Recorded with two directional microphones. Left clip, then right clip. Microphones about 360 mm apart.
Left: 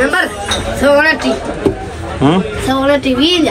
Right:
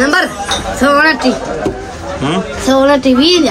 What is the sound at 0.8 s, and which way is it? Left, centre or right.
Speech, right.